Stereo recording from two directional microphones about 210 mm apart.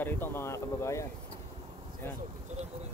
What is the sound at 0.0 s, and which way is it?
Speech, 10° left (ahead or behind).